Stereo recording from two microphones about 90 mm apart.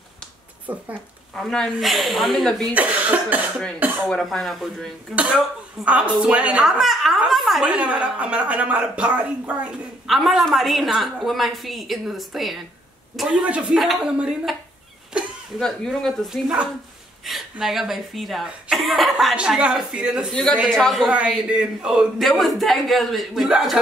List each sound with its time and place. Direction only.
0.7 s speech: 15° right (ahead or behind)
1.3 s a woman's voice: 5° left (ahead or behind)
2.7 s speech: 15° right (ahead or behind)
4.1 s a woman's voice: 5° left (ahead or behind)
5.1 s a woman's voice: 15° right (ahead or behind)
10.0 s a woman's voice: centre (ahead or behind)
13.4 s a woman's voice: 15° right (ahead or behind)
15.6 s a woman's voice: 5° left (ahead or behind)
19.3 s speech: 10° right (ahead or behind)
20.7 s a woman's voice: 5° left (ahead or behind)
21.1 s speech: 10° right (ahead or behind)
22.2 s a woman's voice: centre (ahead or behind)